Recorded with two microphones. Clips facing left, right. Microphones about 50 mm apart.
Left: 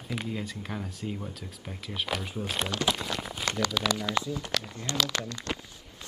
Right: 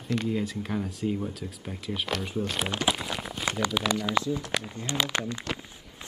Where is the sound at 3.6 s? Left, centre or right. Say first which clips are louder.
Right 2 dB; centre.